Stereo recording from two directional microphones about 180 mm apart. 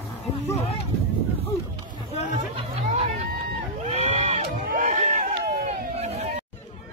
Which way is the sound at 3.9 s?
35° right (ahead or behind).